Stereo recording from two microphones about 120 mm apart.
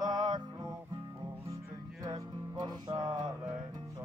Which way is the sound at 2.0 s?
35° right (ahead or behind).